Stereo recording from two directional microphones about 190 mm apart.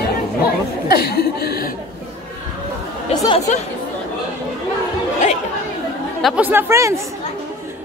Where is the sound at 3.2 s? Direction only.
25° left (ahead or behind).